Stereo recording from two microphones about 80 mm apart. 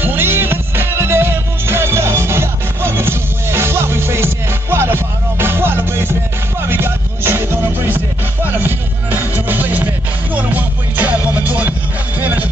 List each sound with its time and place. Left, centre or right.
0.0 s music: right